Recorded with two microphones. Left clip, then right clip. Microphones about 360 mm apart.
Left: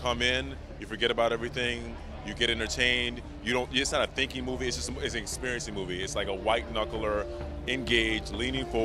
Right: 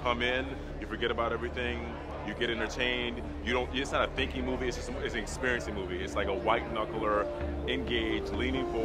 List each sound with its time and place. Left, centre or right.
0.0 s a man's voice: left
1.0 s a man's voice: left